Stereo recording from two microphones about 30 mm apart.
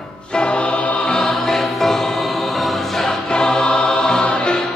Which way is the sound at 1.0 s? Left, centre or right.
Left.